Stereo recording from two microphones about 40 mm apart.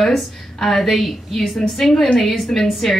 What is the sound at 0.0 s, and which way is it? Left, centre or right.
A woman's voice, centre.